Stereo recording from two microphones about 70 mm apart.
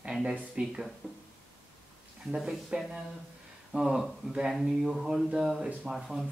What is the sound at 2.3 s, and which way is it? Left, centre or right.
Speech, centre.